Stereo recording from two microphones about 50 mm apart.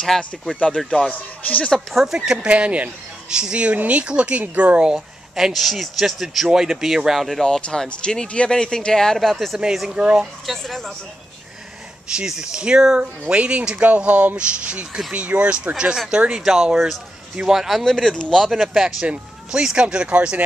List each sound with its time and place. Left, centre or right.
0.8 s speech: centre
1.4 s speech: left
2.1 s speech: centre
3.3 s speech: centre
4.9 s a man's voice: centre
7.4 s speech: centre
9.9 s speech: right
10.4 s a man's voice: centre
12.3 s speech: centre; by 14.3 s right
14.3 s a man's voice: right; by 17.9 s centre
17.9 s speech: centre
18.4 s a man's voice: centre
20.1 s speech: right